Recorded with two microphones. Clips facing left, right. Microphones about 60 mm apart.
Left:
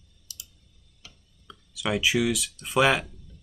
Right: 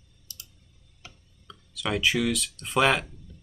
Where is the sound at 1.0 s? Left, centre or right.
Right.